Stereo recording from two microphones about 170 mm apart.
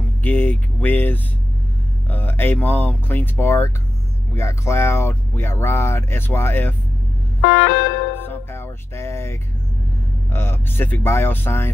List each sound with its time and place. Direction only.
0.2 s vehicle: 10° left (ahead or behind)
2.0 s speech: 10° left (ahead or behind)
7.4 s music: 90° left
8.2 s music: 15° left (ahead or behind)
10.3 s speech: 15° left (ahead or behind)